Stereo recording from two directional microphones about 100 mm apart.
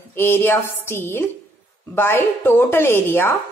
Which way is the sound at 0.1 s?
25° left (ahead or behind).